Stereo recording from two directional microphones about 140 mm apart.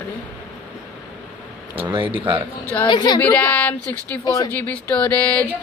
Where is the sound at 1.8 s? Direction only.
40° right (ahead or behind).